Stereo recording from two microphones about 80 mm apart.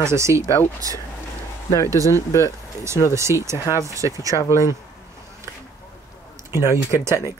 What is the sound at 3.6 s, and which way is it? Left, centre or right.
Speech, left.